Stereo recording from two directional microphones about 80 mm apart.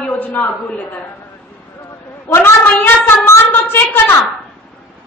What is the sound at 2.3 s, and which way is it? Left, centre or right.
A woman's voice, left.